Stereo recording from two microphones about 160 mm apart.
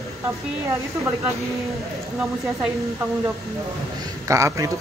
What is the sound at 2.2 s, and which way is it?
Speech, 5° right (ahead or behind).